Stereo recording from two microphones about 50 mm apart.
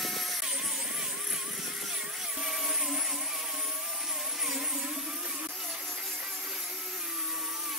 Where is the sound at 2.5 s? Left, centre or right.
Centre.